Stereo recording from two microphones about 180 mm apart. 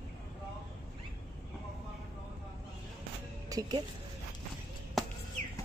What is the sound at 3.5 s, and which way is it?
Speech, 20° right (ahead or behind).